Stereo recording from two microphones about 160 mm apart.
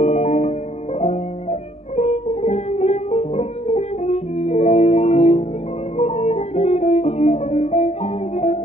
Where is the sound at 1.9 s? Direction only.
45° left (ahead or behind).